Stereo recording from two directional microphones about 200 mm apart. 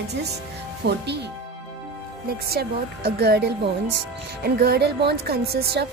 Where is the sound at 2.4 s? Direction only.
50° right (ahead or behind).